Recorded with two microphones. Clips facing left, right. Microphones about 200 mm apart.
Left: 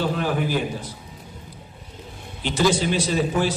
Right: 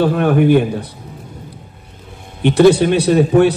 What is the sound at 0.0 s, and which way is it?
Speech, 60° right (ahead or behind).